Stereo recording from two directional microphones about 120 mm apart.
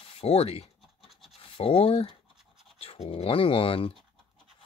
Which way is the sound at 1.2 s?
50° left (ahead or behind).